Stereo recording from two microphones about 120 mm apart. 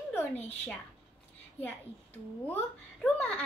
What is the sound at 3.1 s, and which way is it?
Speech, 10° left (ahead or behind).